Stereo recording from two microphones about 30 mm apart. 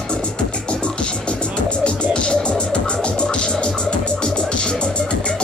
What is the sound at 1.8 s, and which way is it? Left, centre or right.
Music, left.